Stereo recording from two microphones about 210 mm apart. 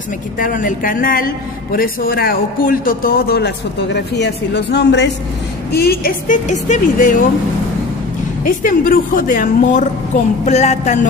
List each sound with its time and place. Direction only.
0.4 s a man's voice: 40° left (ahead or behind)
8.5 s a woman's voice: 40° left (ahead or behind)